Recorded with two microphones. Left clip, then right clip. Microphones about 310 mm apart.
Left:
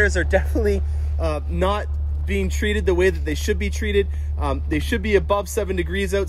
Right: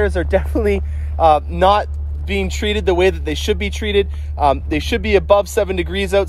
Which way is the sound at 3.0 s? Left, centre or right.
Left.